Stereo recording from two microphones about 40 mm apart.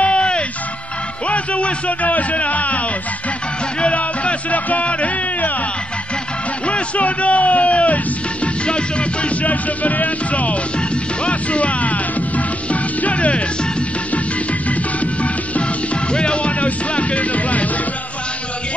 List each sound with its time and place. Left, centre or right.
0.0 s music: left
3.8 s music: left
6.6 s music: left
15.5 s music: left